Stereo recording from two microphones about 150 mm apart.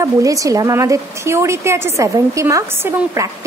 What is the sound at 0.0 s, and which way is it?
A woman's voice, 20° right (ahead or behind).